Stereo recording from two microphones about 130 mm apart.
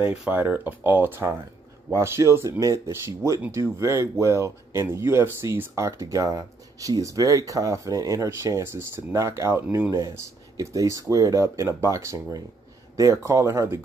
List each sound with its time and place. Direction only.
0.1 s speech: 10° right (ahead or behind)